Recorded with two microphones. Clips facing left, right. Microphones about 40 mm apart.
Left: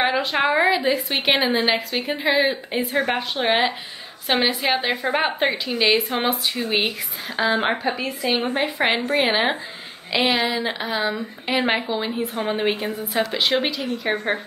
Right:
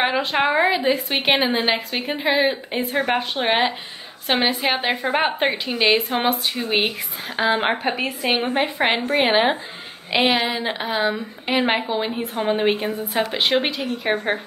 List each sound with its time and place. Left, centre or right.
0.0 s a sound: centre
0.6 s a woman's voice: centre
7.8 s a woman's voice: right
8.7 s a woman's voice: centre
10.2 s a woman's voice: centre